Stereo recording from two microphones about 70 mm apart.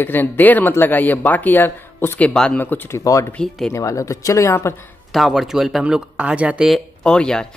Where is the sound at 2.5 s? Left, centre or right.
Left.